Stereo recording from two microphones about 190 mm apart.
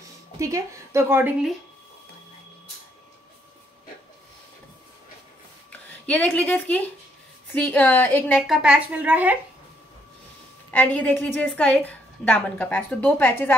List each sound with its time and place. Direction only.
0.4 s a woman's voice: 15° right (ahead or behind)
5.7 s a woman's voice: 10° left (ahead or behind); by 9.4 s 10° right (ahead or behind)
10.7 s a woman's voice: 10° left (ahead or behind)